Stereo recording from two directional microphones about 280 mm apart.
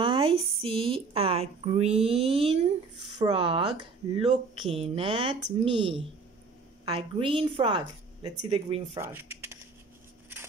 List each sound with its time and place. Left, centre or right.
0.0 s a woman's voice: centre
9.0 s speech: centre